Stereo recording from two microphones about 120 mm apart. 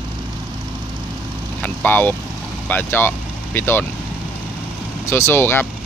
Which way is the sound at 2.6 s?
15° left (ahead or behind).